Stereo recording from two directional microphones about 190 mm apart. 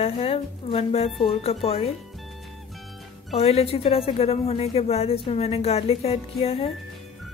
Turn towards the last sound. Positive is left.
turn(degrees=30)  # may be behind; listen again after turning